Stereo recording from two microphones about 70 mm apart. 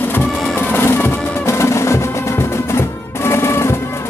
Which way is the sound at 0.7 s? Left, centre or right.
Left.